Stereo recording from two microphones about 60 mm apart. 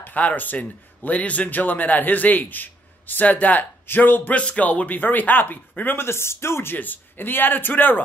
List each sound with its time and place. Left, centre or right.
0.0 s speech: left
4.4 s speech: left
6.0 s speech: left